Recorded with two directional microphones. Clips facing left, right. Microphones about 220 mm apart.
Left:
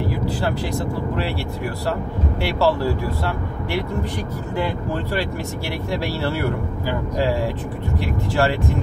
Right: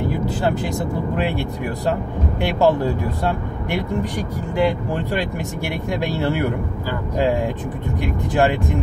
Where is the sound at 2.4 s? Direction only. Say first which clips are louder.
Right 2 dB; 20° right (ahead or behind).